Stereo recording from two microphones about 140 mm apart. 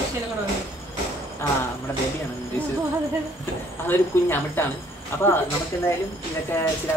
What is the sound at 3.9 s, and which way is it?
Speech, 15° left (ahead or behind).